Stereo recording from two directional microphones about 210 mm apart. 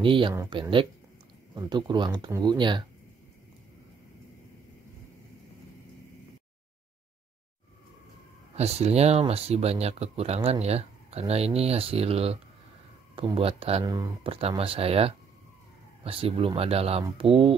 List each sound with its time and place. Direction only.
0.0 s speech: 25° right (ahead or behind)
8.5 s speech: 30° right (ahead or behind)